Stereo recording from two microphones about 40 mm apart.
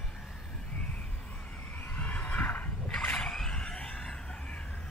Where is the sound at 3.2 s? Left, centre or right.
Centre.